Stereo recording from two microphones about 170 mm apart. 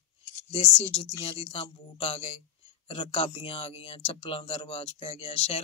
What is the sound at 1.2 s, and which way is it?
Speech, 35° left (ahead or behind).